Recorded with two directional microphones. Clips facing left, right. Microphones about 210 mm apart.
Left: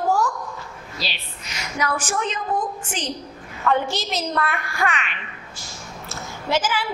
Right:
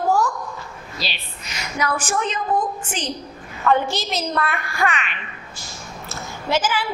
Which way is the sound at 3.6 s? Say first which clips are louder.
Right 2 dB; 15° right (ahead or behind).